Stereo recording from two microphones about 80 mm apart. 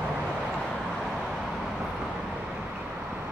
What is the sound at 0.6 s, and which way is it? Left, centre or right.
Vehicle, centre.